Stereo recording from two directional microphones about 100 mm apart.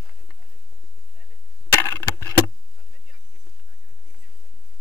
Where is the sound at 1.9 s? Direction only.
30° left (ahead or behind).